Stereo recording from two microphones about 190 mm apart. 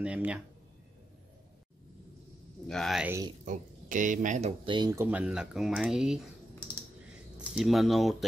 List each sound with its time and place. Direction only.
0.0 s speech: 5° right (ahead or behind)
2.7 s speech: centre (ahead or behind)
3.1 s speech: 15° right (ahead or behind)
3.4 s speech: 45° right (ahead or behind); by 5.0 s 20° right (ahead or behind)
5.0 s speech: 5° right (ahead or behind)
7.3 s speech: centre (ahead or behind)